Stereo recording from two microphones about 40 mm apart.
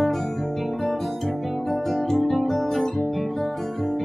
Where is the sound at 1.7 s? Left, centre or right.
Centre.